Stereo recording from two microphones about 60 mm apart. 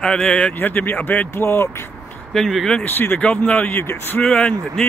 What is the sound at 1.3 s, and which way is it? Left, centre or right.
Speech, left.